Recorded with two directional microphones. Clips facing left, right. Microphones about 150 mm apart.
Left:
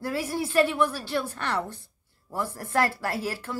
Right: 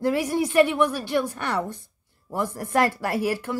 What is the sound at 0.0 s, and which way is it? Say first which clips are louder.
Speech: right 6 dB; 20° right (ahead or behind).